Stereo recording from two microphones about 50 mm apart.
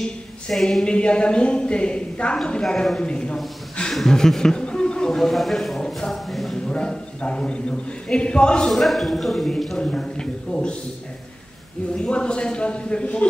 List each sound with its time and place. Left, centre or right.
0.5 s speech: centre
0.8 s a woman's voice: left
3.9 s a man's voice: centre
6.3 s a sound: centre
6.7 s a man's voice: centre
8.6 s speech: centre
9.8 s a woman's voice: centre
12.0 s a woman's voice: centre